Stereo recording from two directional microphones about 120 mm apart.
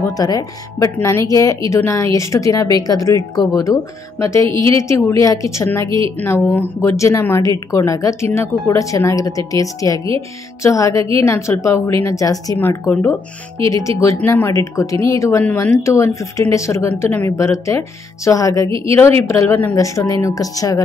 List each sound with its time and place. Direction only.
0.1 s a woman's voice: 30° left (ahead or behind)
13.7 s speech: 25° left (ahead or behind)